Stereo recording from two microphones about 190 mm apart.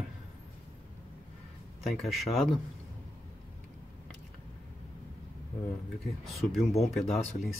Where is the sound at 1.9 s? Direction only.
Centre (ahead or behind).